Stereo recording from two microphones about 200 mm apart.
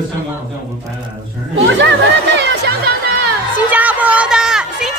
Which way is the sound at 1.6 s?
65° right (ahead or behind).